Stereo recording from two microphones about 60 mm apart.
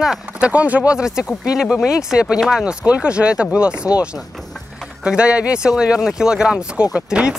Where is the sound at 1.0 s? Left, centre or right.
Centre.